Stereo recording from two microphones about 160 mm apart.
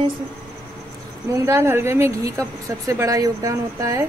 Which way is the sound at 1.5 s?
15° right (ahead or behind).